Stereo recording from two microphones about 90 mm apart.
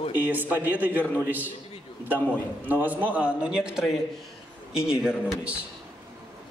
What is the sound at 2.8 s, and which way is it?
A man's voice, 20° right (ahead or behind).